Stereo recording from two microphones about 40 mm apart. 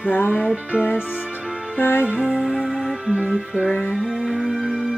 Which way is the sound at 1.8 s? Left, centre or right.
Left.